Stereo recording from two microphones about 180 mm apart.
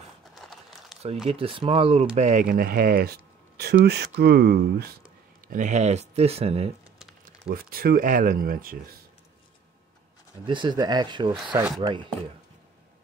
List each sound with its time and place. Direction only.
0.3 s a sound: centre (ahead or behind)
1.2 s speech: 30° right (ahead or behind); by 4.9 s 60° right (ahead or behind)
5.5 s speech: 45° right (ahead or behind)
7.4 s speech: 55° right (ahead or behind)
10.4 s speech: 25° right (ahead or behind)